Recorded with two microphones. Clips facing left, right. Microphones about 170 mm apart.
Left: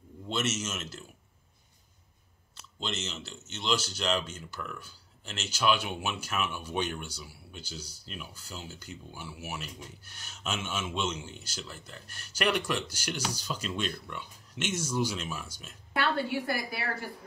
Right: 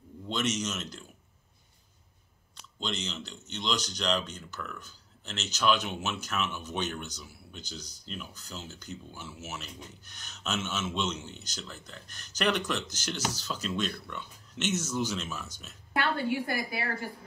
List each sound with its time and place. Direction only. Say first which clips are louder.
0.3 s a man's voice: right 1 dB; 5° left (ahead or behind)
2.5 s speech: right 1 dB; 5° left (ahead or behind)
16.0 s a woman's voice: even; 30° left (ahead or behind)